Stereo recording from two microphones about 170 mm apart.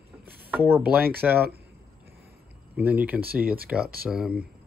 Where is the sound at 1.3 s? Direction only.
65° right (ahead or behind).